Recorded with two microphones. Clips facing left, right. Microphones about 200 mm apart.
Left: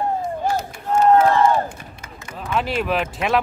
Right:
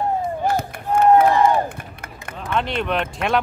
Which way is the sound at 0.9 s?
15° right (ahead or behind).